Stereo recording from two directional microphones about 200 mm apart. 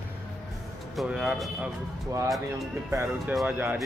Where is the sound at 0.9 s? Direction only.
5° right (ahead or behind).